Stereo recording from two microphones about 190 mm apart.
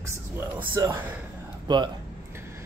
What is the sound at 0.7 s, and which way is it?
Speech, 20° right (ahead or behind).